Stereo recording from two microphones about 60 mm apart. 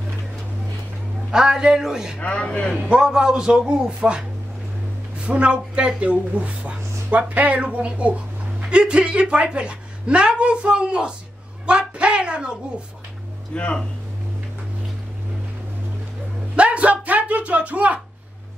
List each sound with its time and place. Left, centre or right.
1.3 s speech: centre
2.1 s a man's voice: centre
2.9 s speech: centre
12.0 s a sound: centre
13.6 s a man's voice: centre
16.5 s speech: right